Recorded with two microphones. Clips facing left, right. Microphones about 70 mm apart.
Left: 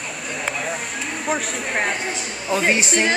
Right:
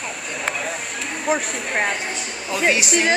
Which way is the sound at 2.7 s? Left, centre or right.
Left.